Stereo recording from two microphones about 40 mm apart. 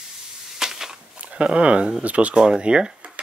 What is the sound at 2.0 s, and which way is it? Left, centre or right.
Speech, right.